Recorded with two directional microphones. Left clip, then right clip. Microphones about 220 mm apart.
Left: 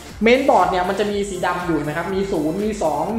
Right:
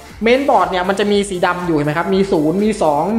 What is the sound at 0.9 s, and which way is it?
Speech, 40° right (ahead or behind).